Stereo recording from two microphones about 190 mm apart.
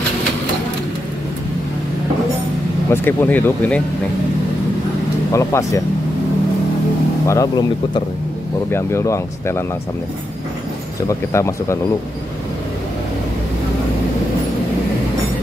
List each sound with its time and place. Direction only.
2.9 s speech: 10° left (ahead or behind)
5.3 s speech: 15° left (ahead or behind)
7.2 s speech: 20° left (ahead or behind)
11.1 s speech: 15° left (ahead or behind)